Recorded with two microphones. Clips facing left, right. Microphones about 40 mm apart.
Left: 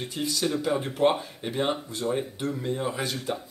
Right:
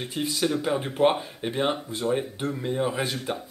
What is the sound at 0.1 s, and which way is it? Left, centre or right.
A man's voice, right.